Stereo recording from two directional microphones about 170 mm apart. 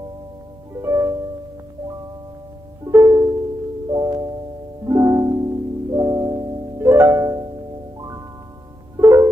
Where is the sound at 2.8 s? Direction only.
15° right (ahead or behind).